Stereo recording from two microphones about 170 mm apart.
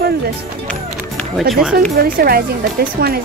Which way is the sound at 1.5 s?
5° right (ahead or behind).